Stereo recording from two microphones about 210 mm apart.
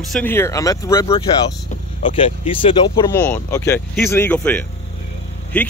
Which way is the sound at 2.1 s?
25° left (ahead or behind).